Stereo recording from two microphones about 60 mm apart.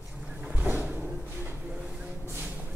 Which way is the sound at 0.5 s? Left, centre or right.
Right.